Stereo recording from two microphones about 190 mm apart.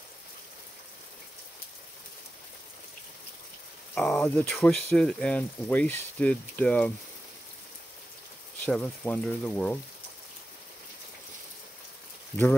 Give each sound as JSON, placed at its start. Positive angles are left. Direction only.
{"t": 3.9, "sound": "speech", "side_deg": 5}
{"t": 8.5, "sound": "speech", "side_deg": 10}